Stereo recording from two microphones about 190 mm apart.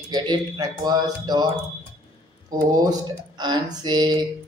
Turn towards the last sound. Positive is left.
turn(degrees=-20)  # may be behind; listen again after turning